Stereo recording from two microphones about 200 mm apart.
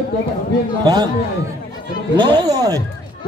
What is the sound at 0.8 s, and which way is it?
Speech, 20° right (ahead or behind).